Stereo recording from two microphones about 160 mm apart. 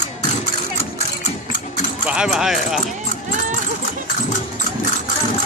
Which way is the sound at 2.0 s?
5° right (ahead or behind).